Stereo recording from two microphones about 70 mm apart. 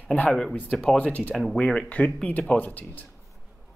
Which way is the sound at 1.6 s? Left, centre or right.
Centre.